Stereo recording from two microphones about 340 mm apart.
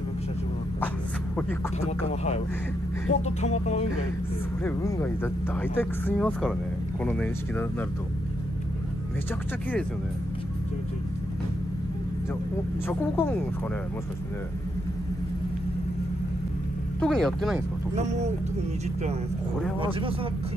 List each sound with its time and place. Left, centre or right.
1.8 s speech: centre
4.6 s speech: centre
12.8 s speech: centre
17.0 s speech: centre
17.9 s speech: centre
19.8 s speech: centre